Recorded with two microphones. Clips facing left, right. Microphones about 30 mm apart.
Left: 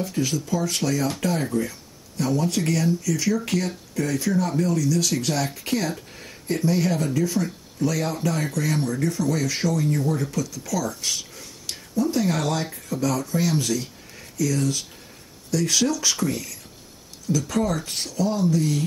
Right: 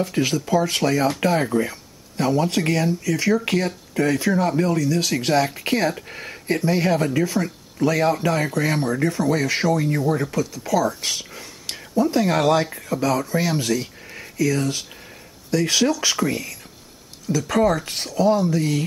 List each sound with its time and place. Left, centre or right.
0.1 s speech: right
14.1 s a sound: right
14.6 s speech: centre
15.5 s speech: right
17.8 s speech: centre
18.1 s speech: right